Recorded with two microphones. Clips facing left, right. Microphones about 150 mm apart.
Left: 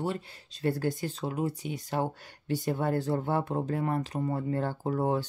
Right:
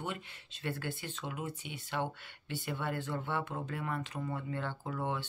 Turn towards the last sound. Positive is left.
turn(degrees=40)  # may be behind; listen again after turning